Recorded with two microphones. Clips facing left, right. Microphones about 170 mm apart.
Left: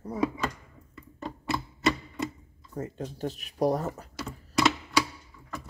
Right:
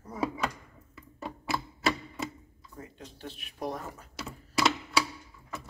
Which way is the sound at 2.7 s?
45° left (ahead or behind).